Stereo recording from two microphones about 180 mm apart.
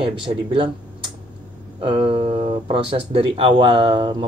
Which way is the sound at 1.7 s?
30° right (ahead or behind).